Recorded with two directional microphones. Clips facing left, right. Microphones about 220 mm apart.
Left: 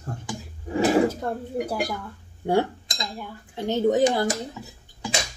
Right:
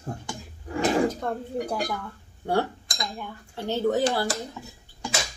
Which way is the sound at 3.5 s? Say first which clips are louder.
Left 3 dB; 15° left (ahead or behind).